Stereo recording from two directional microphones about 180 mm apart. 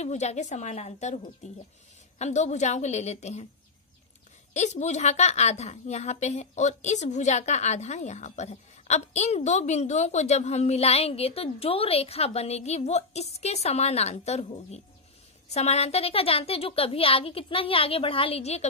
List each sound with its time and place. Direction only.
0.0 s a woman's voice: 40° left (ahead or behind)
4.6 s a woman's voice: 40° left (ahead or behind)